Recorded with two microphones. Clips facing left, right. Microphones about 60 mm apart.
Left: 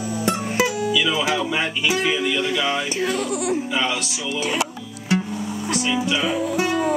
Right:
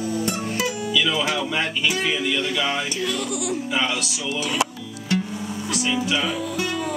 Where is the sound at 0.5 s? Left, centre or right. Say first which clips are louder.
Left 5 dB; left.